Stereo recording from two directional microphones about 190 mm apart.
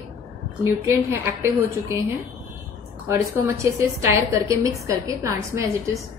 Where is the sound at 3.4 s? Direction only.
15° right (ahead or behind).